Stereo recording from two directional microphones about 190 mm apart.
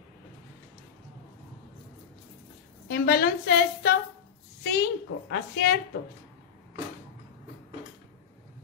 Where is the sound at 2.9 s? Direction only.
55° left (ahead or behind).